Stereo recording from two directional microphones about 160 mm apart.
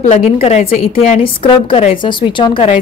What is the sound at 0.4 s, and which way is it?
A woman's voice, 45° left (ahead or behind).